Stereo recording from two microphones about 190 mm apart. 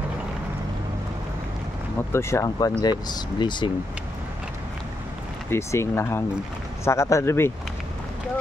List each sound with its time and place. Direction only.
2.1 s speech: 15° left (ahead or behind)
5.5 s speech: 15° left (ahead or behind)